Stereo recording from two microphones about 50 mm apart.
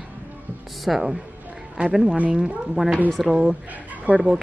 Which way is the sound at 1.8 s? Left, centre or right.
Right.